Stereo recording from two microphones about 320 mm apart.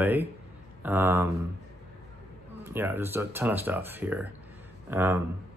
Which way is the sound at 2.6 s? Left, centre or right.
Centre.